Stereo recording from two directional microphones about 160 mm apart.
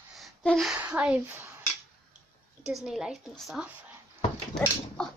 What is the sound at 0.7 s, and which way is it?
Speech, 10° right (ahead or behind).